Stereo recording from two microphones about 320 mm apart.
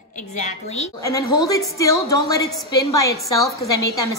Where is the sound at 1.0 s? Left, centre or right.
Centre.